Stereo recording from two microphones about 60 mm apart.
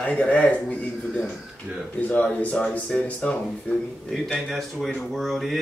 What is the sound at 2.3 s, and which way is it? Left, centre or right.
A man's voice, left.